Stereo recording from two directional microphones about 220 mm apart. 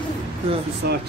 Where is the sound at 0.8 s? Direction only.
50° right (ahead or behind).